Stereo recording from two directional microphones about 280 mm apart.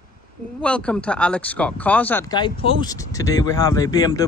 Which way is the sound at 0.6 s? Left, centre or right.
Centre.